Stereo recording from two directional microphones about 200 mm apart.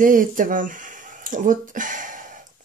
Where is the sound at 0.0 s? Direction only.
40° right (ahead or behind).